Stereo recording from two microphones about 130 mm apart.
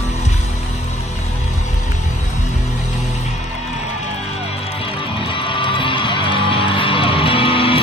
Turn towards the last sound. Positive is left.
turn(degrees=45)  # may be behind; listen again after turning